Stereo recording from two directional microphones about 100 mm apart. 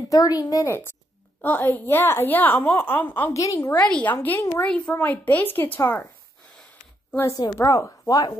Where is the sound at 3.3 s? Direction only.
35° left (ahead or behind).